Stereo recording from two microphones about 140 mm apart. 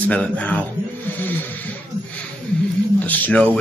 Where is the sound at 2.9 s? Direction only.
10° left (ahead or behind).